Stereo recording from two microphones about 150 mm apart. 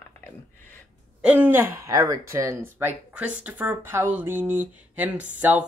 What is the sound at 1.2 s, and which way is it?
Speech, 10° right (ahead or behind).